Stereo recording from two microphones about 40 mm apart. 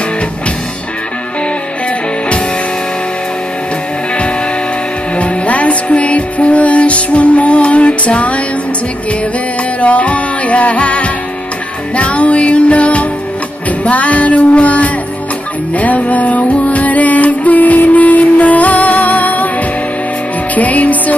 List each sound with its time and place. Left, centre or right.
5.1 s music: left
9.8 s music: left
20.5 s music: left